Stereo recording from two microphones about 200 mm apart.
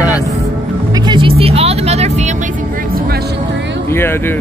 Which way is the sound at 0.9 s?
20° right (ahead or behind).